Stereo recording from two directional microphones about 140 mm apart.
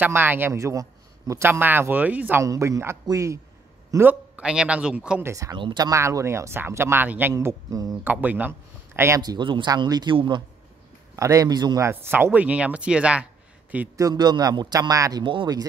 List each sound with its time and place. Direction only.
0.0 s a man's voice: 15° right (ahead or behind)
2.4 s a man's voice: 25° right (ahead or behind); by 5.2 s 5° right (ahead or behind)
5.2 s speech: 25° right (ahead or behind)
8.0 s speech: 15° right (ahead or behind)
9.2 s speech: 30° right (ahead or behind)
11.1 s speech: 25° right (ahead or behind)
11.9 s speech: 15° right (ahead or behind)
13.9 s speech: 25° right (ahead or behind)